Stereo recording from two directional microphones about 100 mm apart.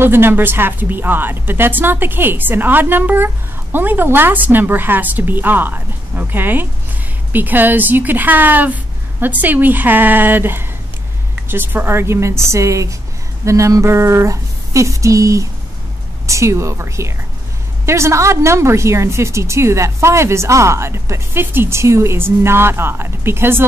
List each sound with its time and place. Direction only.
0.0 s a woman's voice: 20° right (ahead or behind)